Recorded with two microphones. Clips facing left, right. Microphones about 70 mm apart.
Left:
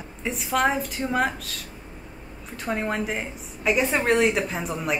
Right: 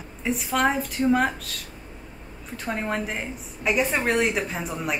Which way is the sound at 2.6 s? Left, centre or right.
Centre.